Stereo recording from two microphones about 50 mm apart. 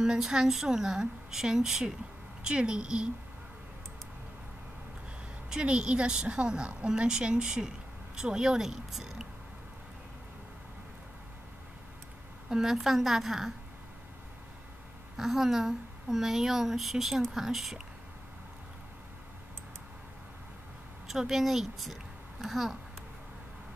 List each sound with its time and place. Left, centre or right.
0.0 s a woman's voice: centre
5.5 s a woman's voice: centre
12.4 s a woman's voice: centre
15.1 s a woman's voice: centre
21.1 s a woman's voice: centre